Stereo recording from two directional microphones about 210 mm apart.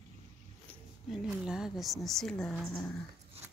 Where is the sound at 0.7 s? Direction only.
Centre (ahead or behind).